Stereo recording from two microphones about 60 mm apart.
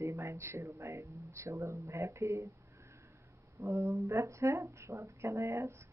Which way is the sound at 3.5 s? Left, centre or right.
Right.